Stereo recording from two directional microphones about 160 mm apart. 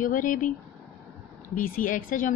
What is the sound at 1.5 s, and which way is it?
Speech, 60° left (ahead or behind).